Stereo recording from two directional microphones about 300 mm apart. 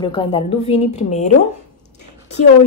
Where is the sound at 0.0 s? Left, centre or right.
Centre.